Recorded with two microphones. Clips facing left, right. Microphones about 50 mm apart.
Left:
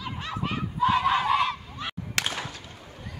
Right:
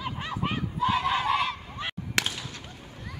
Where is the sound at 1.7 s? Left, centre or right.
Right.